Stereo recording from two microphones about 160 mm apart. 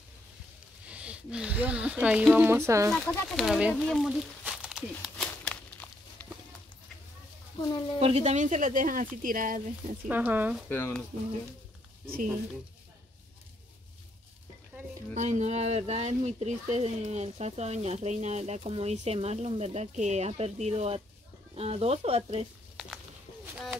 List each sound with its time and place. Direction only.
0.8 s speech: 10° right (ahead or behind)
2.9 s speech: 5° left (ahead or behind)
7.6 s speech: 30° left (ahead or behind)
8.0 s a woman's voice: 40° right (ahead or behind); by 9.6 s 60° right (ahead or behind)
10.0 s speech: 10° right (ahead or behind)
10.7 s speech: 10° left (ahead or behind)
15.1 s speech: 45° right (ahead or behind)